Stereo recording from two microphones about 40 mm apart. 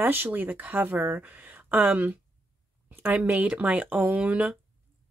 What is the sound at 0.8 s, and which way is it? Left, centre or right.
Speech, right.